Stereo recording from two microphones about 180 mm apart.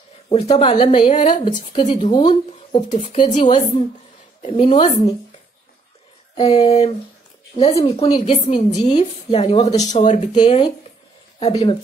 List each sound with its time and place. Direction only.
0.3 s a woman's voice: 30° left (ahead or behind)
6.3 s speech: 35° left (ahead or behind)
10.3 s speech: 25° left (ahead or behind)